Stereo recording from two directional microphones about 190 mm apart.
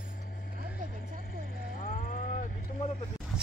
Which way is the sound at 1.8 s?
45° left (ahead or behind).